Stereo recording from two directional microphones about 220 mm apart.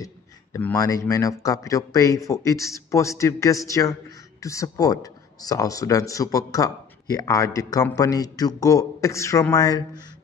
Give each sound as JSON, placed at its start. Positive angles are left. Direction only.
{"t": 0.0, "sound": "speech", "side_deg": 10}